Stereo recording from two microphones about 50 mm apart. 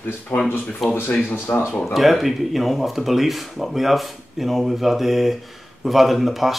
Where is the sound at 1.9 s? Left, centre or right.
Centre.